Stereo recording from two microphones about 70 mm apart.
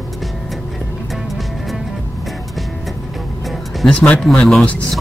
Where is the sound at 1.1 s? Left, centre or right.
Centre.